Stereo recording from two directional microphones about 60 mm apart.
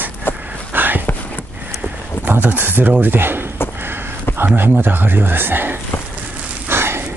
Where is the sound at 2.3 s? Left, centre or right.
Right.